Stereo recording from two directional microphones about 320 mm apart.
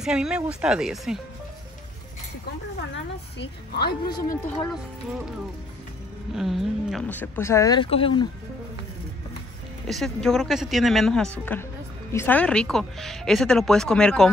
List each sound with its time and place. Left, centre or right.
0.0 s speech: centre
2.9 s a woman's voice: left
6.3 s speech: centre
9.8 s speech: centre